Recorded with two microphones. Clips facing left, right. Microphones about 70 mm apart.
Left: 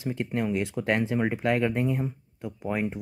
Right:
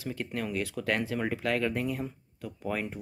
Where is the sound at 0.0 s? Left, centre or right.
Left.